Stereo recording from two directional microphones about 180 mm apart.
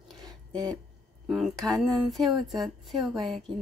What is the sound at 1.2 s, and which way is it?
Speech, centre (ahead or behind).